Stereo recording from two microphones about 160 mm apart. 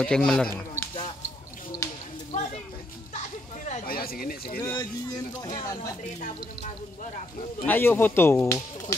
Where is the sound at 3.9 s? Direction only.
70° left (ahead or behind).